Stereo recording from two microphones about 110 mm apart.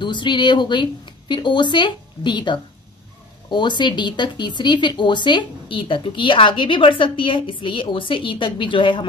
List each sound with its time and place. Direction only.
0.0 s speech: 45° left (ahead or behind)